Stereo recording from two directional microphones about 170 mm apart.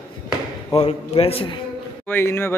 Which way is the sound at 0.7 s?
35° left (ahead or behind).